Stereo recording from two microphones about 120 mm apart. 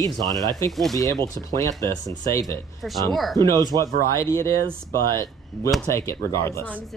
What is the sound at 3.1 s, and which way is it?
Speech, centre (ahead or behind).